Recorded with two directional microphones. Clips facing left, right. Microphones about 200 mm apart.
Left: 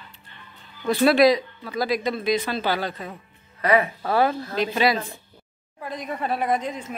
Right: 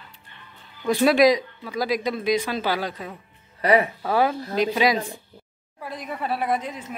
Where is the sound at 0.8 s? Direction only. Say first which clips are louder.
Even; 15° right (ahead or behind).